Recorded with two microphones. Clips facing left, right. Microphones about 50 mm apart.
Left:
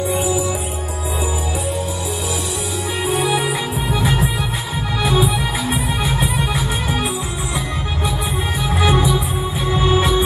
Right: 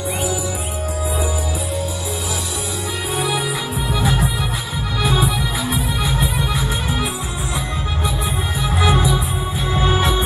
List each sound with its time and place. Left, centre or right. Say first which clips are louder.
3.3 s music: left 3 dB; left
5.7 s music: left 1 dB; left
8.6 s music: left 1 dB; left